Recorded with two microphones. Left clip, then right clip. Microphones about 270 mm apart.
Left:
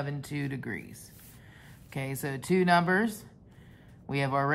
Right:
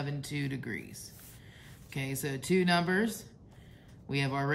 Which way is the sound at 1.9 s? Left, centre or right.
Centre.